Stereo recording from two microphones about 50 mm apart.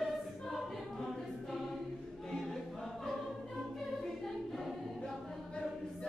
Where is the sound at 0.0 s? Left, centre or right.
Centre.